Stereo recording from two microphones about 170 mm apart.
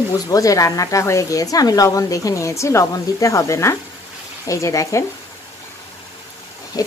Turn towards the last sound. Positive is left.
turn(degrees=20)  # may be behind; listen again after turning